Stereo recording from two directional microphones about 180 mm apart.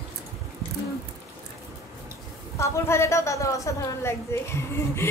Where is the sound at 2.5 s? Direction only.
15° left (ahead or behind).